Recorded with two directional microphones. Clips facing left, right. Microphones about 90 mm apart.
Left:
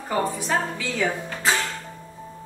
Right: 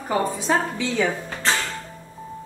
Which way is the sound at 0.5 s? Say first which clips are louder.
Right 3 dB; 25° right (ahead or behind).